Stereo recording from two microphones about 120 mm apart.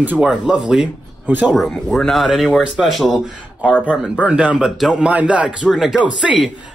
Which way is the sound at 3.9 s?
10° right (ahead or behind).